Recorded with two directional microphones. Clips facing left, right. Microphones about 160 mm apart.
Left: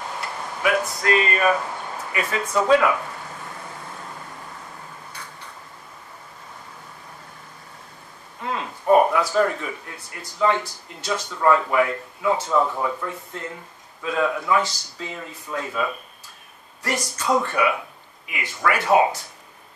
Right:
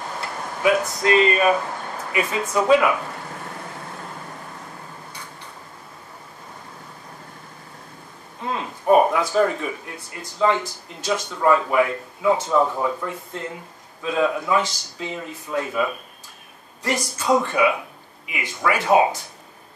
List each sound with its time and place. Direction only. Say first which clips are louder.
0.6 s speech: right 3 dB; 25° right (ahead or behind)
8.5 s a sound: right 1 dB; 20° right (ahead or behind)
9.3 s speech: right 1 dB; 15° right (ahead or behind)
11.1 s speech: right 1 dB; 15° right (ahead or behind)